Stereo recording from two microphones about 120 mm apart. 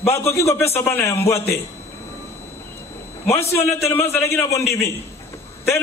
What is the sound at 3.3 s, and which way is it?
A man's voice, 20° left (ahead or behind).